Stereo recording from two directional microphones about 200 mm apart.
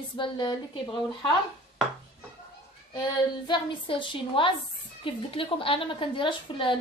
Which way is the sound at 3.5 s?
25° left (ahead or behind).